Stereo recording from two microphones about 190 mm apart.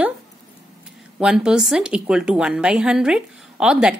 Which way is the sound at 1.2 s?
5° right (ahead or behind).